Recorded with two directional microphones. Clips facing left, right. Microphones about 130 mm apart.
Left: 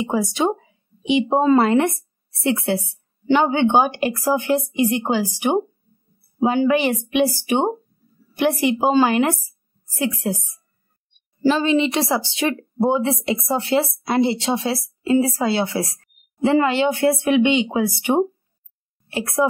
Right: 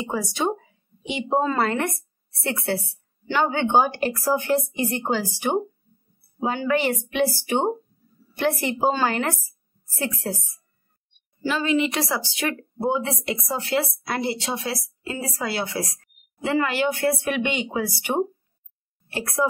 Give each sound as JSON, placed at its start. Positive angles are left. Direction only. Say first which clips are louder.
{"t": 0.0, "sound": "a woman's voice", "louder": "left 5 dB", "side_deg": 20}
{"t": 11.4, "sound": "speech", "louder": "left 5 dB", "side_deg": 30}